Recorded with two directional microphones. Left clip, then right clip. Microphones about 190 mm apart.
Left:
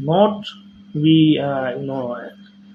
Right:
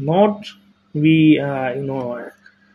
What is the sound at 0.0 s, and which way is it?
Mantra, 25° right (ahead or behind).